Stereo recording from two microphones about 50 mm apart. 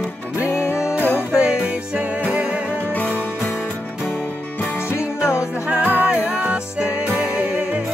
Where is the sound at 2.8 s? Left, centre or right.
Left.